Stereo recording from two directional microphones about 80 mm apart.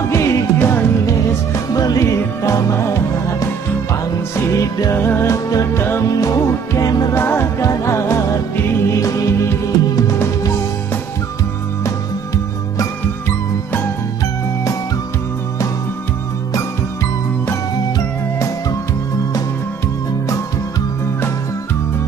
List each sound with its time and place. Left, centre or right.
0.1 s music: left
1.0 s music: left
4.9 s music: left
7.2 s music: left
7.6 s music: left
9.0 s music: left